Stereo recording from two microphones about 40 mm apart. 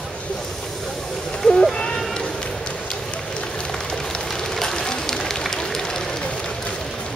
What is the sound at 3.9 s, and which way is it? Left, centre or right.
Fire, centre.